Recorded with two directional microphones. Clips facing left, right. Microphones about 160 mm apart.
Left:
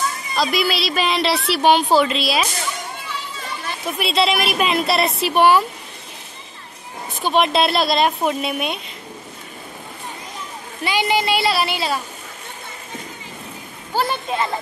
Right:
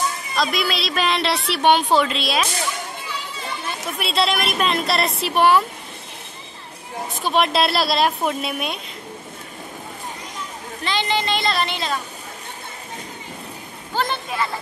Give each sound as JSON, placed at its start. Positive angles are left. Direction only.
{"t": 0.4, "sound": "a woman's voice", "side_deg": 0}
{"t": 4.0, "sound": "a woman's voice", "side_deg": 0}
{"t": 7.2, "sound": "a woman's voice", "side_deg": 0}
{"t": 10.8, "sound": "a woman's voice", "side_deg": 10}
{"t": 13.9, "sound": "a woman's voice", "side_deg": 10}
{"t": 14.3, "sound": "a child's voice", "side_deg": 25}